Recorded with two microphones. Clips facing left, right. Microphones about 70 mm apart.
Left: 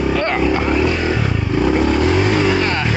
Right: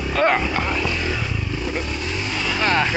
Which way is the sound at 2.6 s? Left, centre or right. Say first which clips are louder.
Even; centre.